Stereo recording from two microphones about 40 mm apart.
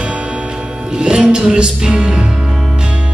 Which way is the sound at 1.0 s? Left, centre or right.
Right.